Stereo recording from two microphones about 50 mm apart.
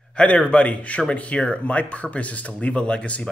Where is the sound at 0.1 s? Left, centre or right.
Centre.